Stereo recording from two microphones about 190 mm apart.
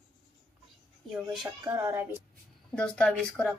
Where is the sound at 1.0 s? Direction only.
Centre (ahead or behind).